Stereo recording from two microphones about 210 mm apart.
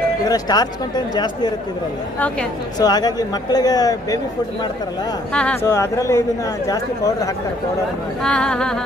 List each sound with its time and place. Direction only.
0.3 s speech: 20° left (ahead or behind)
2.1 s speech: 5° left (ahead or behind)
2.8 s speech: 20° left (ahead or behind)
5.3 s speech: 5° left (ahead or behind)
8.2 s music: 5° left (ahead or behind)